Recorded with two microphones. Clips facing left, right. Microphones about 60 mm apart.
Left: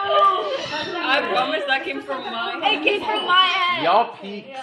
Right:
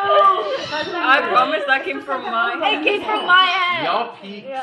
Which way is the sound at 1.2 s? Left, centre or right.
Centre.